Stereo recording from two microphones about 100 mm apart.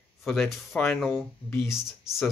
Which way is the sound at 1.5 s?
25° left (ahead or behind).